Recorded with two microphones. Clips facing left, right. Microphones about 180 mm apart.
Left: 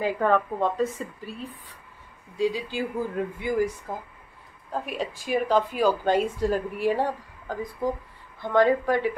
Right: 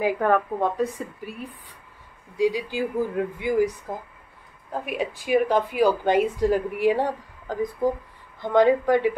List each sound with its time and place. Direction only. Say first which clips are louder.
0.0 s speech: right 2 dB; 10° right (ahead or behind)
4.8 s speech: right 7 dB; 10° right (ahead or behind)